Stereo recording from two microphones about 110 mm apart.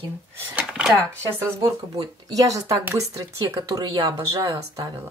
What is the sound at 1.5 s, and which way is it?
Speech, 35° right (ahead or behind).